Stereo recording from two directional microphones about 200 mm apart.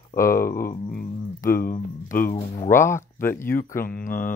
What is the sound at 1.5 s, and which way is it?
Speech, 45° left (ahead or behind).